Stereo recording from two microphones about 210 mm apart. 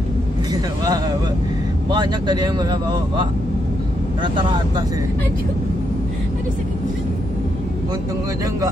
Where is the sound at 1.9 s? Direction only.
20° right (ahead or behind).